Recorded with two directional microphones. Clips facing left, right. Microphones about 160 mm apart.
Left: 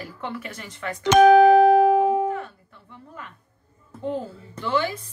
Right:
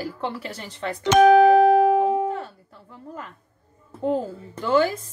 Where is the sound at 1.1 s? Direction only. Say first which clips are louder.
Left 1 dB; 90° left.